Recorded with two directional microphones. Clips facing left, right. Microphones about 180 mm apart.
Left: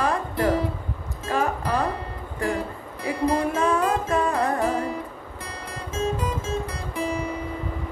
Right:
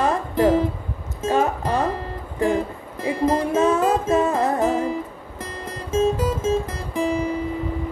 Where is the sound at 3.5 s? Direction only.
20° right (ahead or behind).